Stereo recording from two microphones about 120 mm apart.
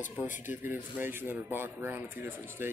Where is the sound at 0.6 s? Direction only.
15° right (ahead or behind).